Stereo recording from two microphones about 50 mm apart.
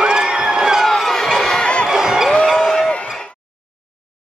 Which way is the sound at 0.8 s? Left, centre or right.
Centre.